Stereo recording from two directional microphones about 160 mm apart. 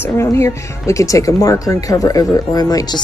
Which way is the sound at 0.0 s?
15° left (ahead or behind).